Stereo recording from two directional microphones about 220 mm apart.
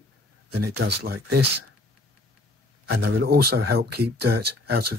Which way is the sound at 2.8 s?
45° right (ahead or behind).